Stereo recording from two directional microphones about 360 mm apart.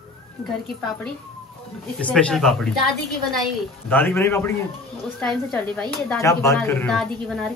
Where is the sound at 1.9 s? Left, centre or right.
Centre.